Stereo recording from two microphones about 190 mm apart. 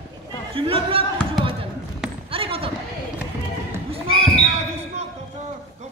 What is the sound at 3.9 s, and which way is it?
Basketball bounce, 30° right (ahead or behind).